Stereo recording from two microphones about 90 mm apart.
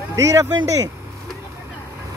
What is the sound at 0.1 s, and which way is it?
Speech, 35° right (ahead or behind).